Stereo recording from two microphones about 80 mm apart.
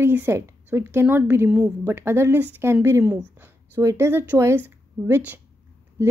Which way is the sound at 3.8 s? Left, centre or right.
Right.